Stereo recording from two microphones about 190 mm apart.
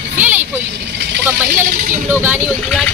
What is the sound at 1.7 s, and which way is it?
Speech, 45° right (ahead or behind).